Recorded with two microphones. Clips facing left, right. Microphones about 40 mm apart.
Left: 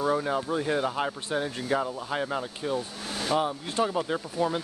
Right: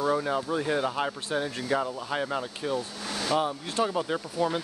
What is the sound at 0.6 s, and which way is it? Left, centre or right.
Speech, centre.